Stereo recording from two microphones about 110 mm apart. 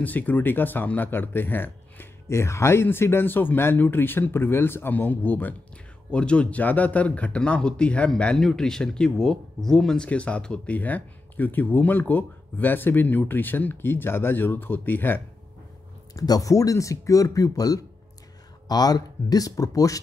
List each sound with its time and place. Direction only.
0.0 s speech: 15° left (ahead or behind)
16.1 s speech: 35° left (ahead or behind)